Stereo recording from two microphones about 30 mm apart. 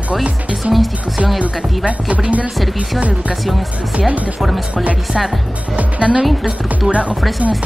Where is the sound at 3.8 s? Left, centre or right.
Right.